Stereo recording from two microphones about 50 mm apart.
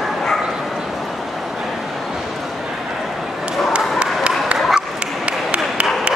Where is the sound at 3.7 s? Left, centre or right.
Right.